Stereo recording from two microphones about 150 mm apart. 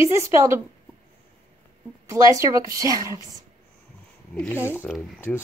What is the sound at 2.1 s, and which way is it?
A woman's voice, 20° right (ahead or behind).